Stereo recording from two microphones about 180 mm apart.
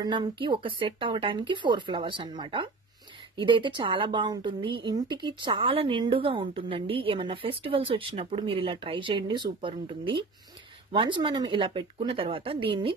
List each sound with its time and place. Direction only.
0.0 s a woman's voice: 25° right (ahead or behind)